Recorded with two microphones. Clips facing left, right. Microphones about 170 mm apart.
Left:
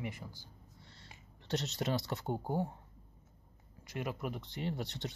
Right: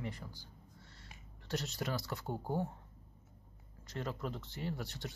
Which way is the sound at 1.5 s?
20° left (ahead or behind).